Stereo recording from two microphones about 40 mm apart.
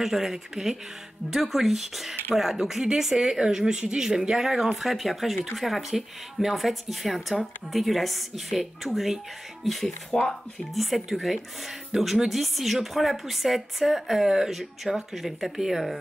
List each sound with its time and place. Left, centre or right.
0.0 s speech: centre
10.1 s speech: left
10.7 s speech: centre